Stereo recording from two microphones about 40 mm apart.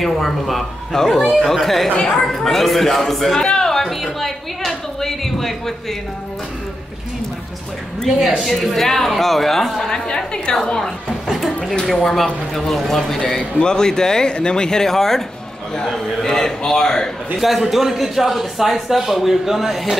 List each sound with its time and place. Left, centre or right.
0.0 s a woman's voice: centre
8.5 s speech: centre
9.8 s a woman's voice: centre
11.2 s a sound: centre
11.8 s speech: centre
13.4 s a woman's voice: left
17.4 s speech: centre